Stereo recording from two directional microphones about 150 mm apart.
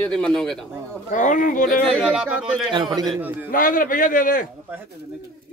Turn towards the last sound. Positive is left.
turn(degrees=65)  # may be behind; listen again after turning